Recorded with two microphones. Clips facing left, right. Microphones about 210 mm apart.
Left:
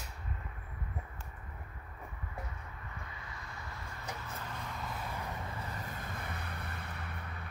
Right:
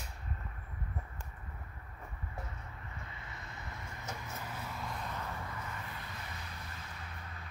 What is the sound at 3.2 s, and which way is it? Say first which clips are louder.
Vehicle: left 1 dB; 25° right (ahead or behind).